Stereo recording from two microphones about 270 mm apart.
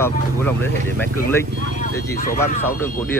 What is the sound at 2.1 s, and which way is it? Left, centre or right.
Speech, left.